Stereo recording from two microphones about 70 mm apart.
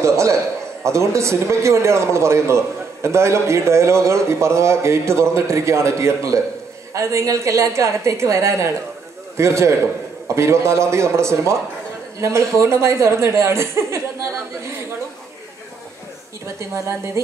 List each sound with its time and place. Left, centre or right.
0.8 s a man's voice: right
16.5 s a woman's voice: right